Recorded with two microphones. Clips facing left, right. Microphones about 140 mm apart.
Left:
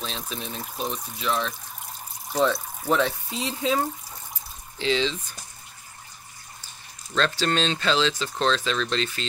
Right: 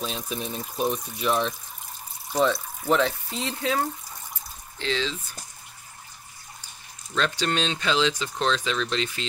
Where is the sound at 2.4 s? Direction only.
Centre (ahead or behind).